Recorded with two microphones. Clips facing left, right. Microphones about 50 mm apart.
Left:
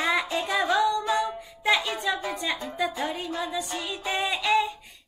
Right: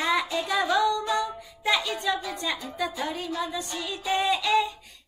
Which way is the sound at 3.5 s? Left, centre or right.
Centre.